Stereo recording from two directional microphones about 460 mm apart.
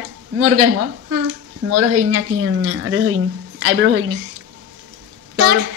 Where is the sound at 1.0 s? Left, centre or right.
Right.